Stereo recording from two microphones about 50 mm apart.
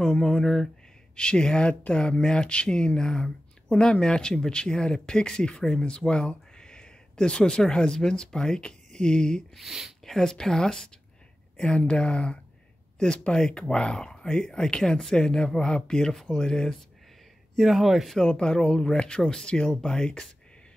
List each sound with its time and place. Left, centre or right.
0.0 s speech: centre
9.6 s speech: centre
10.0 s speech: centre
17.6 s speech: centre
18.2 s speech: centre